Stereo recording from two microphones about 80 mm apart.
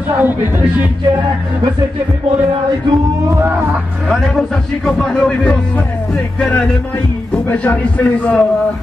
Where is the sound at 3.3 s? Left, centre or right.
Right.